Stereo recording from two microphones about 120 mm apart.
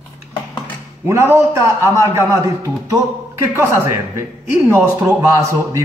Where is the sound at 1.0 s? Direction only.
20° right (ahead or behind).